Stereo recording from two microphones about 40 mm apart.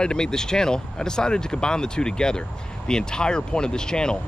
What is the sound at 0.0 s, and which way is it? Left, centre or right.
Speech, centre.